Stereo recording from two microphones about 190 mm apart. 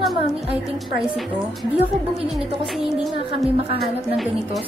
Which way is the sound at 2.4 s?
Centre (ahead or behind).